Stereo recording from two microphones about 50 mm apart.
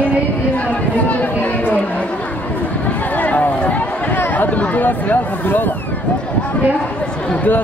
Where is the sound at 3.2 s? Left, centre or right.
Left.